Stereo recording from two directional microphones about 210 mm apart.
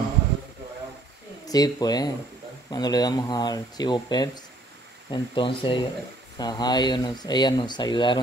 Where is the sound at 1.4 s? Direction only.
20° left (ahead or behind).